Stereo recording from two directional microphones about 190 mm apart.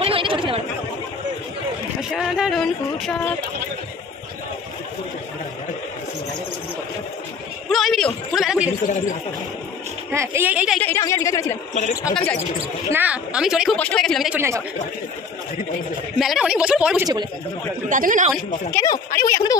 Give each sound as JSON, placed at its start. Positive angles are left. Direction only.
{"t": 0.0, "sound": "speech", "side_deg": -30}
{"t": 2.0, "sound": "speech", "side_deg": -5}
{"t": 7.7, "sound": "a man's voice", "side_deg": 0}
{"t": 10.1, "sound": "speech", "side_deg": -15}
{"t": 10.8, "sound": "speech", "side_deg": 15}
{"t": 12.9, "sound": "a man's voice", "side_deg": -5}
{"t": 16.2, "sound": "a man's voice", "side_deg": 0}
{"t": 17.0, "sound": "speech", "side_deg": -20}
{"t": 17.8, "sound": "a man's voice", "side_deg": -45}
{"t": 18.7, "sound": "speech", "side_deg": 10}